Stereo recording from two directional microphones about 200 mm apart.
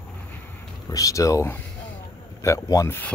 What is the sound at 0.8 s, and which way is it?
Speech, 15° left (ahead or behind).